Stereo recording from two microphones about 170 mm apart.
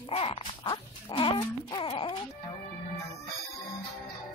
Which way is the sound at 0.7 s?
30° left (ahead or behind).